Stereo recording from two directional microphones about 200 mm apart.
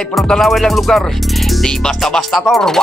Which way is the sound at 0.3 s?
Centre (ahead or behind).